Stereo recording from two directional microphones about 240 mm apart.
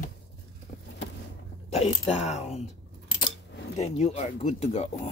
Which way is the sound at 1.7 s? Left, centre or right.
Left.